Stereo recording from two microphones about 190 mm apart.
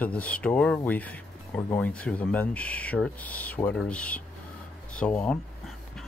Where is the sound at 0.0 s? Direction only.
5° left (ahead or behind).